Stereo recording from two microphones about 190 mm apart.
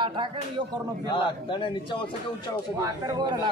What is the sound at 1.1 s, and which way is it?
Speech, 25° left (ahead or behind).